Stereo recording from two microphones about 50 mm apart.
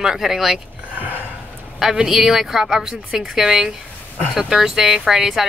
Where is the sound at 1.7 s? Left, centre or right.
Centre.